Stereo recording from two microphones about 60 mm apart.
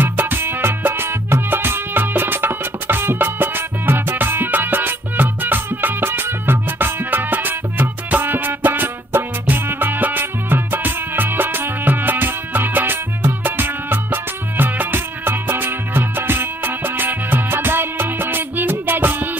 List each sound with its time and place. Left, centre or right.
0.0 s music: right